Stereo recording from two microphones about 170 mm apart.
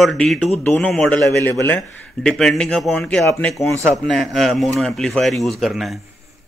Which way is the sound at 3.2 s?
15° left (ahead or behind).